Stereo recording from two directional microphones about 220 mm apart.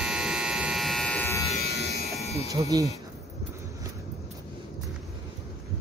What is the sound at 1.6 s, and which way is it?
Electric shaver, 45° left (ahead or behind).